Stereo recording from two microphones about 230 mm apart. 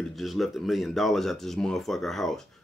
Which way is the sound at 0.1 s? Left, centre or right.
Centre.